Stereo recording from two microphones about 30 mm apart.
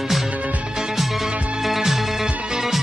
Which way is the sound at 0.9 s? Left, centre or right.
Centre.